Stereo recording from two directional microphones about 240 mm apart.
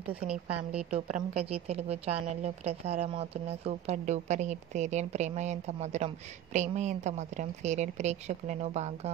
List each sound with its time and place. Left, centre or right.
0.8 s a woman's voice: right